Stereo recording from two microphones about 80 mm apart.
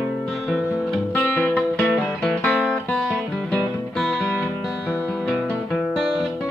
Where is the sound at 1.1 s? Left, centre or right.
Left.